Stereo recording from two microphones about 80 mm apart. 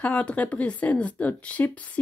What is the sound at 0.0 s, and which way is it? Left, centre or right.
A woman's voice, centre.